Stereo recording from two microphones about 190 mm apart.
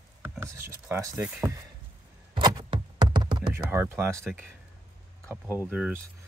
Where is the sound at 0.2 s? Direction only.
10° right (ahead or behind).